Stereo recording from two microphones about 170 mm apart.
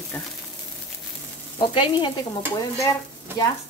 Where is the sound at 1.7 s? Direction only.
30° left (ahead or behind).